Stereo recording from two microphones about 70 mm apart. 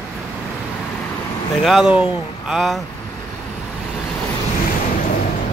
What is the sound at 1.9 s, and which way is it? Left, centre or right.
Speech, centre.